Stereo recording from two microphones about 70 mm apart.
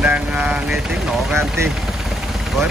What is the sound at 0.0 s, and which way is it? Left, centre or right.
Vehicle, centre.